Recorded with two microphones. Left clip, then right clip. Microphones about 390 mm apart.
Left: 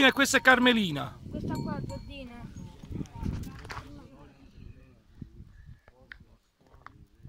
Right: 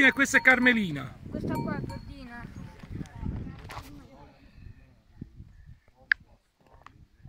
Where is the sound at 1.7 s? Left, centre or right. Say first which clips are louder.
Even; centre.